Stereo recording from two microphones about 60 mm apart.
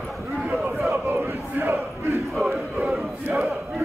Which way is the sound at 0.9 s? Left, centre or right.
Right.